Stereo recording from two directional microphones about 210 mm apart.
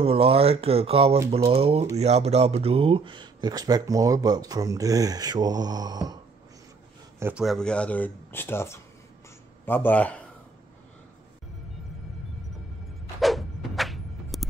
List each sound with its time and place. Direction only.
0.0 s speech: 25° right (ahead or behind)
7.2 s speech: 5° right (ahead or behind)
13.2 s a sound: centre (ahead or behind)